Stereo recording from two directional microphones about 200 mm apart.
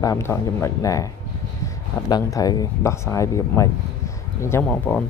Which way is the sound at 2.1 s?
20° left (ahead or behind).